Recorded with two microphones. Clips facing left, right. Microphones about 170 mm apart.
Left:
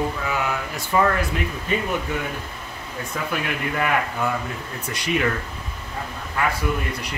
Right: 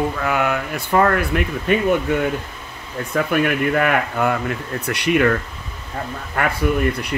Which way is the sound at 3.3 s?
55° right (ahead or behind).